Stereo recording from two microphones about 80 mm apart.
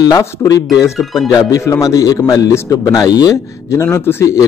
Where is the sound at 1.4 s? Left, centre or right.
Left.